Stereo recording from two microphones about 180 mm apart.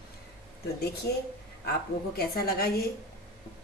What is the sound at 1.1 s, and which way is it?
A woman's voice, 70° left (ahead or behind).